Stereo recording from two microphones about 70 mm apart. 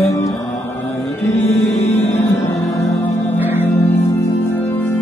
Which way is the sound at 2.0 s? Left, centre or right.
Left.